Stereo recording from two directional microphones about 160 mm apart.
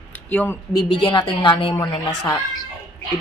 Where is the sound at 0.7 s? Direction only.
25° left (ahead or behind).